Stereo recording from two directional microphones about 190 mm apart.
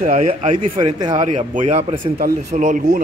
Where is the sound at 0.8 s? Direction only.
25° right (ahead or behind).